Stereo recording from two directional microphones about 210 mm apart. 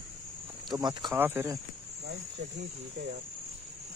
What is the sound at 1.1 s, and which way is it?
Speech, 10° right (ahead or behind).